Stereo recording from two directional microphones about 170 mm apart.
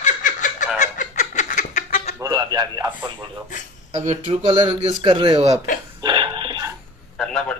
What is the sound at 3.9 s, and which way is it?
Speech, 40° right (ahead or behind).